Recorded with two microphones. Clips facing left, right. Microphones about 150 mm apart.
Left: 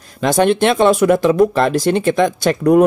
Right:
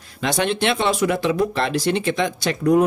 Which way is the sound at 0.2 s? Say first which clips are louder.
Left 8 dB; 45° left (ahead or behind).